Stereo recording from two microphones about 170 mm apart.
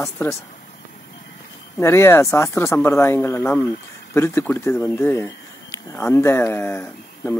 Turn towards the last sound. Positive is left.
turn(degrees=15)  # may be behind; listen again after turning